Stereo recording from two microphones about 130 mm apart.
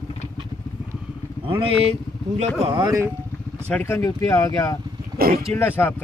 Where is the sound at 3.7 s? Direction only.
15° left (ahead or behind).